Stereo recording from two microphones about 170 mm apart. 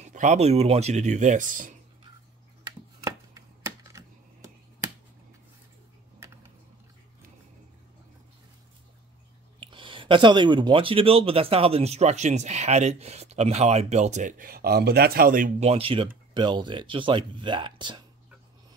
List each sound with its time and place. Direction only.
0.0 s speech: 45° right (ahead or behind)
3.0 s chopping: 20° right (ahead or behind)
6.1 s typing: 15° right (ahead or behind)
9.6 s speech: 30° right (ahead or behind); by 15.5 s 55° right (ahead or behind)
15.6 s speech: 35° right (ahead or behind)